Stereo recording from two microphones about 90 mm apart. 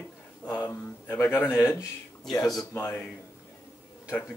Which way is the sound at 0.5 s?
25° left (ahead or behind).